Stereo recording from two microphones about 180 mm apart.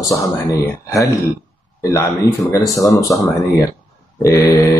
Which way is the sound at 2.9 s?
20° left (ahead or behind).